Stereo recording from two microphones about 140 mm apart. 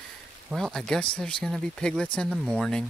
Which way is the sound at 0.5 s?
Centre (ahead or behind).